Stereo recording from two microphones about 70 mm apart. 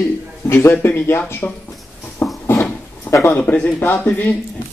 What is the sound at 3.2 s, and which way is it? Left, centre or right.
Speech, left.